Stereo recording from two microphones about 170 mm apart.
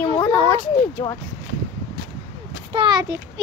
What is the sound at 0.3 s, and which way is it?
Speech, 10° left (ahead or behind).